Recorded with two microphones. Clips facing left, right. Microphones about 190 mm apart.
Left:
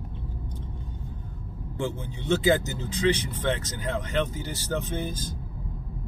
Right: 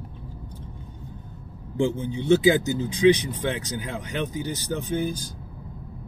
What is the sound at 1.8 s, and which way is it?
Speech, 20° right (ahead or behind).